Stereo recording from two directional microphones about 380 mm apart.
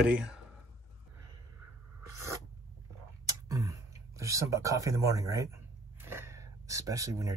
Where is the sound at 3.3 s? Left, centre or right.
Centre.